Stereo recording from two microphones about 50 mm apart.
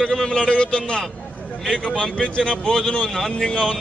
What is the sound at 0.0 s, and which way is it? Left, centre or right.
A man's voice, centre.